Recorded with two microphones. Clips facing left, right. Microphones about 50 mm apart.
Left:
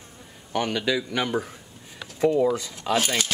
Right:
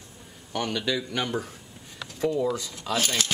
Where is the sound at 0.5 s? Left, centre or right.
Centre.